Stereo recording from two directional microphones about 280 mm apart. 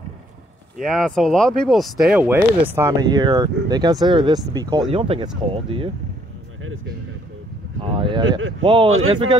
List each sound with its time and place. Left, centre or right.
0.8 s speech: centre
7.8 s speech: centre
8.4 s speech: right
8.6 s speech: centre